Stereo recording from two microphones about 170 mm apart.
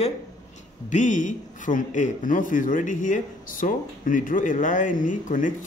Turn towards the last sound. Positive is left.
turn(degrees=50)  # may be behind; listen again after turning